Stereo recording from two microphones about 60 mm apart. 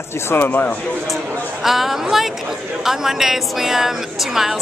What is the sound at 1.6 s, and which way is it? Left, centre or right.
Speech, centre.